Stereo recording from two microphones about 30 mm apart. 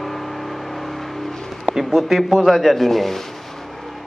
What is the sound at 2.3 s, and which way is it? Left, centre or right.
Speech, centre.